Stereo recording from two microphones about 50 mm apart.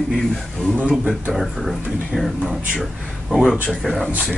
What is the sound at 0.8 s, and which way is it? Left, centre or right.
Speech, right.